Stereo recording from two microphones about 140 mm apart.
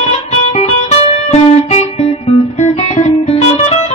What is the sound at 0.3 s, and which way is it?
Music, 50° left (ahead or behind).